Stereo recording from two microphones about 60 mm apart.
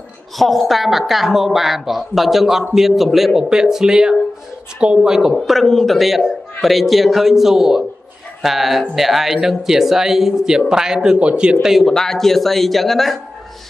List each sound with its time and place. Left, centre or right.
0.4 s speech: centre
5.3 s speech: centre
11.8 s speech: centre